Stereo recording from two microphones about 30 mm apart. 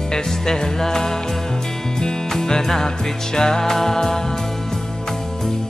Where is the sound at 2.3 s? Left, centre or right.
Centre.